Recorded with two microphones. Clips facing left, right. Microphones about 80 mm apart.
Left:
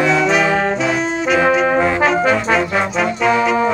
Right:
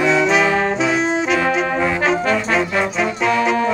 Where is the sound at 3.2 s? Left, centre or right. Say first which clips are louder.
Left 3 dB; centre.